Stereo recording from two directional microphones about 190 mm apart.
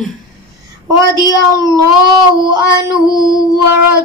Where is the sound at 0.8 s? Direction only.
20° right (ahead or behind).